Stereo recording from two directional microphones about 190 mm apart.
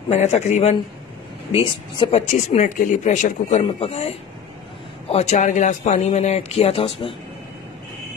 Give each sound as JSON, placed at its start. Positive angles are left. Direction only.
{"t": 0.1, "sound": "speech", "side_deg": 35}
{"t": 5.1, "sound": "speech", "side_deg": 35}